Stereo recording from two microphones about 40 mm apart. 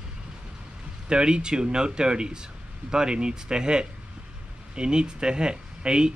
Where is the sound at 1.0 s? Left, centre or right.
Right.